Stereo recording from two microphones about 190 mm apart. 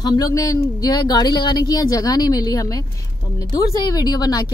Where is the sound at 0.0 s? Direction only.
20° left (ahead or behind).